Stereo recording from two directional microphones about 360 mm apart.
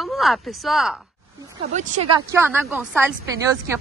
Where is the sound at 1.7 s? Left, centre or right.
Centre.